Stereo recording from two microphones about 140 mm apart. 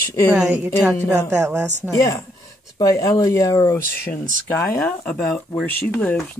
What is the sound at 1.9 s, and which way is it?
Speech, 25° left (ahead or behind).